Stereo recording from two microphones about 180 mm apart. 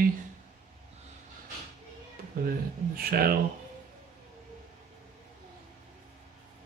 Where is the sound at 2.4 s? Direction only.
55° right (ahead or behind).